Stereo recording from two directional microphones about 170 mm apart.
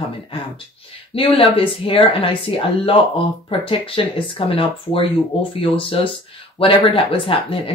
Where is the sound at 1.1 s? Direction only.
30° left (ahead or behind).